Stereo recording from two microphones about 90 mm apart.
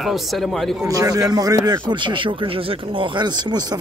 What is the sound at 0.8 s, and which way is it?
A man's voice, 40° right (ahead or behind).